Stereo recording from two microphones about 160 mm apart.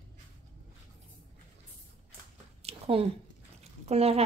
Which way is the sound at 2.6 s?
40° right (ahead or behind).